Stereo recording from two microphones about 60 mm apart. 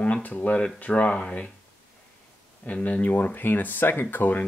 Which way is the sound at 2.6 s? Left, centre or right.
Left.